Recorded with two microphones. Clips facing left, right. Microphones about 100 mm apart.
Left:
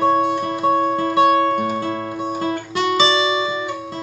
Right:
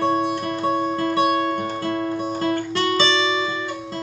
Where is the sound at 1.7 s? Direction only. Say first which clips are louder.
Even; 15° left (ahead or behind).